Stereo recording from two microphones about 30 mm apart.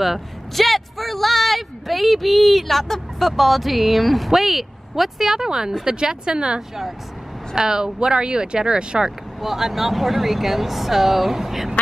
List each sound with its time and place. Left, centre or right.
0.6 s speech: centre
5.4 s speech: centre
9.4 s speech: centre